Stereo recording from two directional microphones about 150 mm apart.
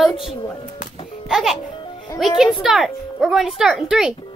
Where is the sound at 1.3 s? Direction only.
Centre (ahead or behind).